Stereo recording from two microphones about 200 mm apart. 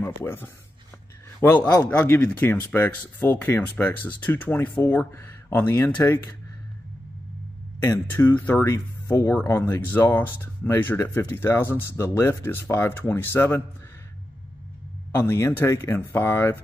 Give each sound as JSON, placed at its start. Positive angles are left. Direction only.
{"t": 0.0, "sound": "speech", "side_deg": 10}
{"t": 8.1, "sound": "speech", "side_deg": 10}
{"t": 15.1, "sound": "speech", "side_deg": 10}